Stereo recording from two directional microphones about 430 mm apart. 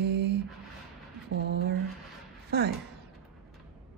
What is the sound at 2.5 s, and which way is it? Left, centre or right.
Speech, right.